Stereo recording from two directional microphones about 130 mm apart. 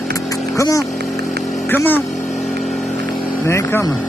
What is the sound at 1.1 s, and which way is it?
Vehicle, centre (ahead or behind).